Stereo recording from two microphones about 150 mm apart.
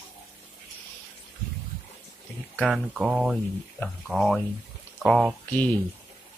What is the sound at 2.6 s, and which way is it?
Speech, 5° right (ahead or behind).